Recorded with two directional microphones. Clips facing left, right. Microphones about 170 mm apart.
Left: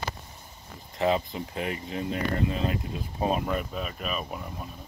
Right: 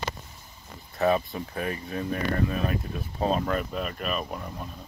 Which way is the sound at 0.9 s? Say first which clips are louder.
Right 2 dB; 20° left (ahead or behind).